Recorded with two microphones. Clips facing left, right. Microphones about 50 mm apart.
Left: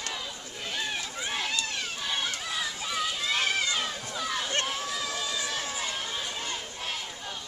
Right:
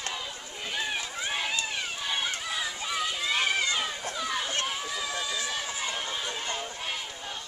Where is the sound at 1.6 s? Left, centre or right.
Centre.